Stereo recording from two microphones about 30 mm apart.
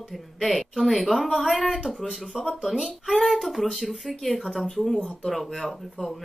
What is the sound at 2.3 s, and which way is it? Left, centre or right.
Speech, right.